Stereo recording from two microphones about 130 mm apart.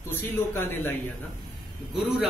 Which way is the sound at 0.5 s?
15° left (ahead or behind).